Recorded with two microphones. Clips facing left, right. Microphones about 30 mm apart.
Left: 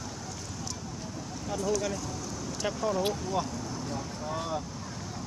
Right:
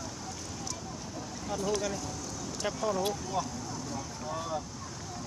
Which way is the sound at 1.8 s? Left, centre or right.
Centre.